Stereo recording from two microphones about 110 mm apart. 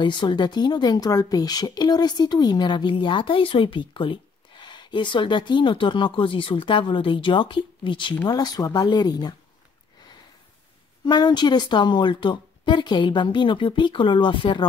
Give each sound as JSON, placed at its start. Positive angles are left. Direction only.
{"t": 0.0, "sound": "speech", "side_deg": 45}
{"t": 8.3, "sound": "speech", "side_deg": 40}
{"t": 11.1, "sound": "speech", "side_deg": 40}